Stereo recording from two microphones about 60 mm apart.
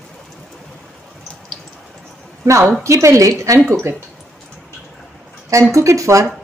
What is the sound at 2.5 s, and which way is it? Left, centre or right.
Speech, right.